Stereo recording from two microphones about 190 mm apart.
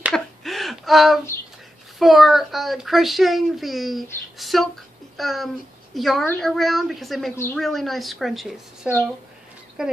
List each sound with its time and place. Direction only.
0.1 s gasp: centre (ahead or behind)
2.0 s a child's voice: centre (ahead or behind)
5.1 s a sound: centre (ahead or behind)
5.9 s a child's voice: centre (ahead or behind)